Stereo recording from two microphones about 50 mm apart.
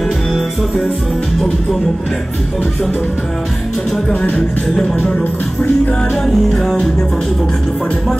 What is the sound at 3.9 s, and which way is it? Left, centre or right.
Music, centre.